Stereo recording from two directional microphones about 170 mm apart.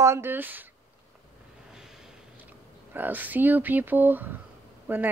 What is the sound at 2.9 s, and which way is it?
Speech, 10° right (ahead or behind).